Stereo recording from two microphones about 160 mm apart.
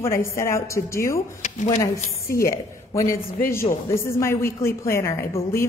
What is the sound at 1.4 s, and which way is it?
Speech, 50° left (ahead or behind).